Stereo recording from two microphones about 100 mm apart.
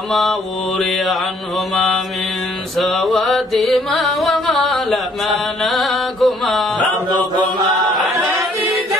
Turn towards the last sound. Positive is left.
turn(degrees=-45)  # may be behind; listen again after turning